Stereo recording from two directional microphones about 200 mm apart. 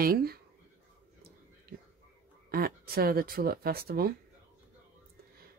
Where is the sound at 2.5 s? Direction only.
50° right (ahead or behind).